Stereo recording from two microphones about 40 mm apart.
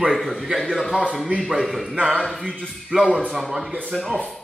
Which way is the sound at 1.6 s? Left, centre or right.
Centre.